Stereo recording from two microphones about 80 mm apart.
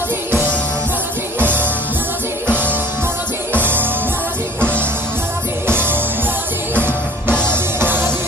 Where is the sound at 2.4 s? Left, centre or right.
Centre.